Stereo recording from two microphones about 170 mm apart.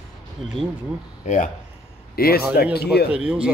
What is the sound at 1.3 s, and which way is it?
Speech, 45° left (ahead or behind).